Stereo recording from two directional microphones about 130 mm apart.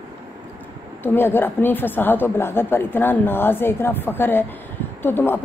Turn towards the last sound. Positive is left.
turn(degrees=15)  # may be behind; listen again after turning